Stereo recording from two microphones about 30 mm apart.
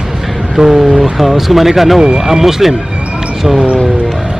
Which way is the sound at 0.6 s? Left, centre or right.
Right.